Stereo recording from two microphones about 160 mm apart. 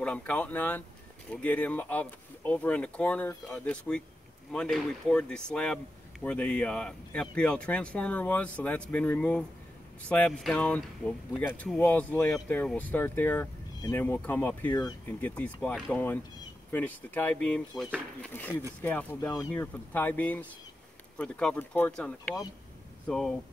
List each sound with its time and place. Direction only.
0.0 s speech: 5° left (ahead or behind)
14.7 s speech: 25° left (ahead or behind)
15.0 s speech: 10° left (ahead or behind)